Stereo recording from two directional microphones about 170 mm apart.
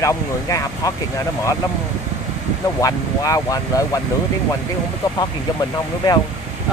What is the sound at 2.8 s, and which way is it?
Speech, 20° left (ahead or behind).